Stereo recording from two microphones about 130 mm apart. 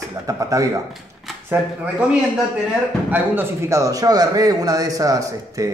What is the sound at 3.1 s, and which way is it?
A man's voice, 15° right (ahead or behind).